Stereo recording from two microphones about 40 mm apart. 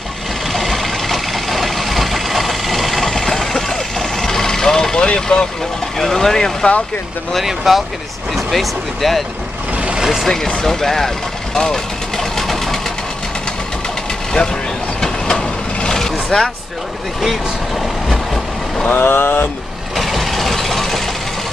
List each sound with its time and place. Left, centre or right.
0.5 s vehicle: centre
5.0 s speech: left
5.9 s speech: centre
7.4 s speech: centre
10.2 s speech: centre
11.5 s vehicle: centre
15.0 s vehicle: centre
18.9 s speech: left
20.0 s vehicle: centre